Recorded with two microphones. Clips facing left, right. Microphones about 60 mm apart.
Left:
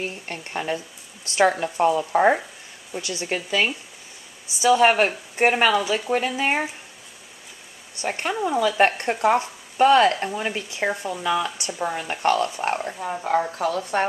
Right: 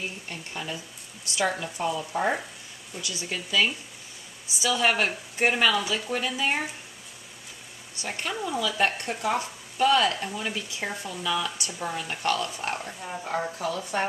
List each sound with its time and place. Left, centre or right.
0.0 s speech: left
8.0 s speech: left